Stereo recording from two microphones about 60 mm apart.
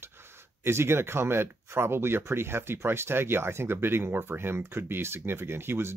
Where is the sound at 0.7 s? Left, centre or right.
Right.